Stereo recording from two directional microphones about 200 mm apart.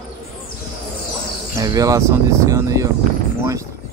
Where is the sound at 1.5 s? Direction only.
20° right (ahead or behind).